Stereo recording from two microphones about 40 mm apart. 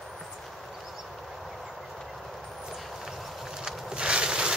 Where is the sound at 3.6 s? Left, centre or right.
Right.